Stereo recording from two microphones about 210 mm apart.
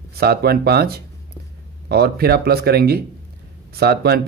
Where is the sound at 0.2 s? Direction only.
50° right (ahead or behind).